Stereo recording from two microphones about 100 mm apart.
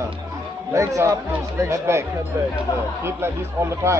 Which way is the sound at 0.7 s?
30° right (ahead or behind).